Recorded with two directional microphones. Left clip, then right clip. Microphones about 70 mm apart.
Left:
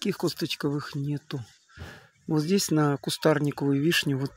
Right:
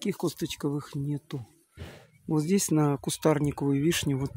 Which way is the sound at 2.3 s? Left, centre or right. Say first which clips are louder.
Left 1 dB; centre.